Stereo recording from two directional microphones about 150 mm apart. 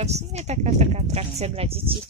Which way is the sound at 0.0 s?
45° right (ahead or behind).